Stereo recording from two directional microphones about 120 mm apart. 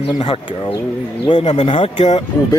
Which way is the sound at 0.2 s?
45° left (ahead or behind).